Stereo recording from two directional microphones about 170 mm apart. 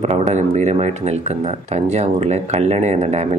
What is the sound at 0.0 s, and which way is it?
Speech, 40° right (ahead or behind).